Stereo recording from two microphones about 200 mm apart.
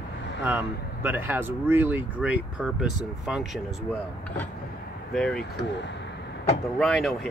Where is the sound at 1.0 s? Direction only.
10° right (ahead or behind).